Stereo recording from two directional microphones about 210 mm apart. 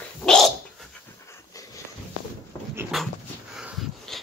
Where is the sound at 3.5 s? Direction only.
Centre (ahead or behind).